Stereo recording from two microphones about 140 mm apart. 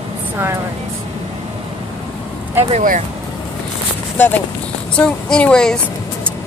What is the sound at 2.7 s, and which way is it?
Speech, 60° right (ahead or behind).